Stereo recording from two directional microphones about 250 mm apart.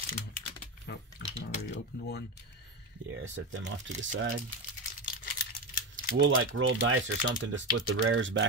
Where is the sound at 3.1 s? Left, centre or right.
Right.